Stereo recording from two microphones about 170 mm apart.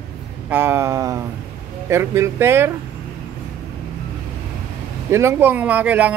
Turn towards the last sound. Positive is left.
turn(degrees=-10)  # may be behind; listen again after turning